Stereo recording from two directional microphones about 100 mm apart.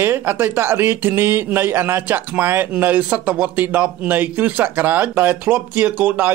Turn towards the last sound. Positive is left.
turn(degrees=-15)  # may be behind; listen again after turning